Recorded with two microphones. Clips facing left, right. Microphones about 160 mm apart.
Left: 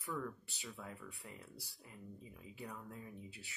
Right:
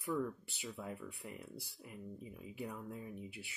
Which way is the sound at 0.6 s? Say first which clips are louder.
Right 5 dB; 20° right (ahead or behind).